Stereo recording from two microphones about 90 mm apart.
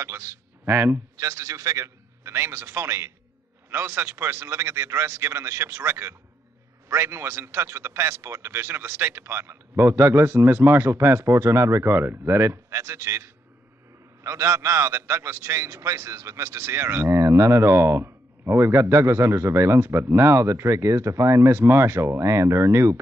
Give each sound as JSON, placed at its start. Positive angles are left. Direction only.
{"t": 0.0, "sound": "a man's voice", "side_deg": -30}